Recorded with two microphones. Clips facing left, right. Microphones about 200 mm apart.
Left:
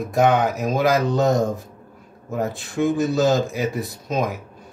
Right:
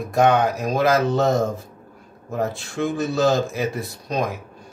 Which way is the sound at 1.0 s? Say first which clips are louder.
Even; 15° left (ahead or behind).